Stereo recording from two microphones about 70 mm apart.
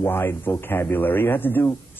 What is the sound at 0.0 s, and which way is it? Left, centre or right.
Speech, left.